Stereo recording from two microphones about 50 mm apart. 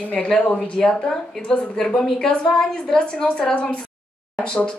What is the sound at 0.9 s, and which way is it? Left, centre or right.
Speech, centre.